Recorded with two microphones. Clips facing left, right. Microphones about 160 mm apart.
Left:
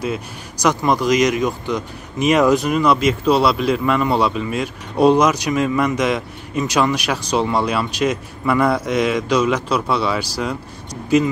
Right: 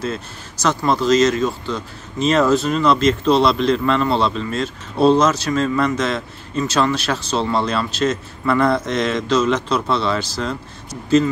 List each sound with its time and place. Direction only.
0.0 s speech: 15° left (ahead or behind)